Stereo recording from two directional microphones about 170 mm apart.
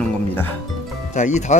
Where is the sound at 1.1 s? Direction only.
45° left (ahead or behind).